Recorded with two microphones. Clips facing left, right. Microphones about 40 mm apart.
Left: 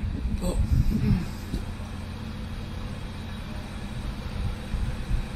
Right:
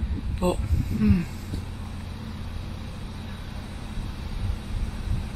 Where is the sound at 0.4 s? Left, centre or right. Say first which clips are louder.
Right 8 dB; right.